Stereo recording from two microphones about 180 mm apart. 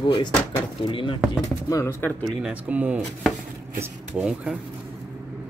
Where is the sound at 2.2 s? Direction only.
5° right (ahead or behind).